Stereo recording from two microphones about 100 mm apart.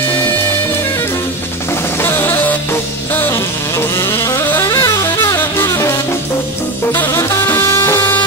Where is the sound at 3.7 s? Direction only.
30° left (ahead or behind).